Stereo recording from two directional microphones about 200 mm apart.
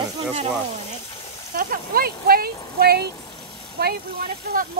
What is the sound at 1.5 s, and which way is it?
Speech, 45° right (ahead or behind).